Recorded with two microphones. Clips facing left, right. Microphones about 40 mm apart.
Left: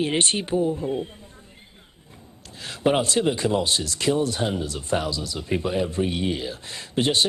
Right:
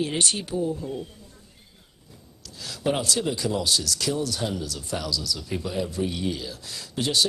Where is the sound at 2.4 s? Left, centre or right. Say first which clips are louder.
Left 4 dB; left.